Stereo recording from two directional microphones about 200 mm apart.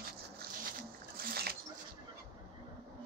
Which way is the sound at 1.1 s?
50° right (ahead or behind).